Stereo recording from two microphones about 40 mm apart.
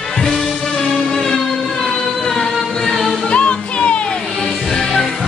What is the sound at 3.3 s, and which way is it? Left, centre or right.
Music, left.